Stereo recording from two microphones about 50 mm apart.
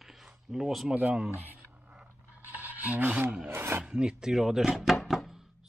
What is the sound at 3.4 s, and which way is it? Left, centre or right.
Speech, right.